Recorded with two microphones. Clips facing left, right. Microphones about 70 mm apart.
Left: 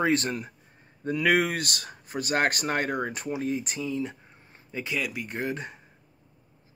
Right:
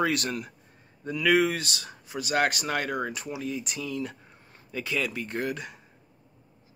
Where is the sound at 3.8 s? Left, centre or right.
Left.